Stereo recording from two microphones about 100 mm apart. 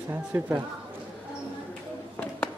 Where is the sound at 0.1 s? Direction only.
20° right (ahead or behind).